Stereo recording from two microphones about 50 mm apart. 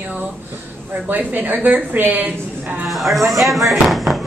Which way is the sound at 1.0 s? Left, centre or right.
Right.